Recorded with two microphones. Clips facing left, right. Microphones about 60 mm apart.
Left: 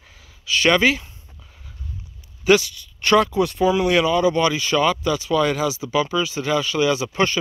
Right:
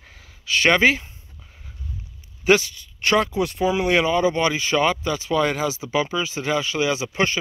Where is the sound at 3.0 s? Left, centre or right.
Centre.